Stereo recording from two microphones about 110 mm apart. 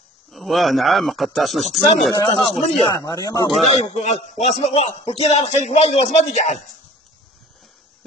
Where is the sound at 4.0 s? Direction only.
90° left.